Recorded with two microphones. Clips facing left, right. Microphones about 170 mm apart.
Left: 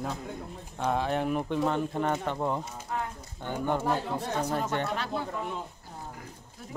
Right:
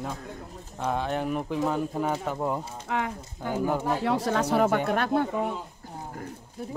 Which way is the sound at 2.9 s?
90° right.